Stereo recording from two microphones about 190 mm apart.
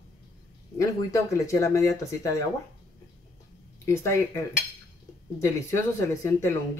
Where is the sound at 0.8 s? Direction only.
15° left (ahead or behind).